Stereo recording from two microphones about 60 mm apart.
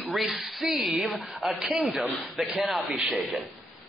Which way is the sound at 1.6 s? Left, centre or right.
Centre.